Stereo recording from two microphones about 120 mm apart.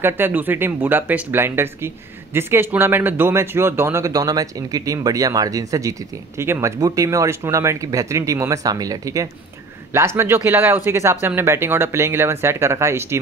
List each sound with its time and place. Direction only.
0.0 s speech: 15° right (ahead or behind)